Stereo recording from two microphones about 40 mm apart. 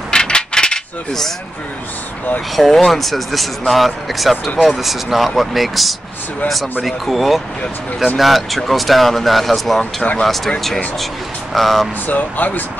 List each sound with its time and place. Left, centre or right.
0.1 s coin: centre
2.5 s speech: centre
11.5 s speech: centre
12.1 s speech: left